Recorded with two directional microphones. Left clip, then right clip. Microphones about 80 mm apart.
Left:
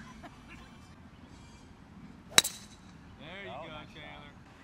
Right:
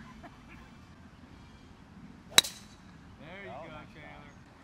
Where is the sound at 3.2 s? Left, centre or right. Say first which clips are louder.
Left 1 dB; left.